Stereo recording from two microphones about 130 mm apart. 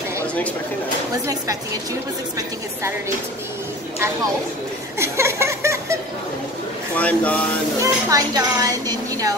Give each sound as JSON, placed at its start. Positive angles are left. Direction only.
{"t": 4.9, "sound": "a sound", "side_deg": -20}
{"t": 7.0, "sound": "speech", "side_deg": 10}
{"t": 7.8, "sound": "speech", "side_deg": -25}